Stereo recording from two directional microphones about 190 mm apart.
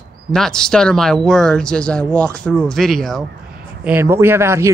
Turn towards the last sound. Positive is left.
turn(degrees=-15)  # may be behind; listen again after turning